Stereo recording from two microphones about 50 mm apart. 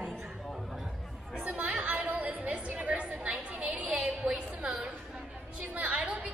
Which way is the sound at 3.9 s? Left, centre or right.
Right.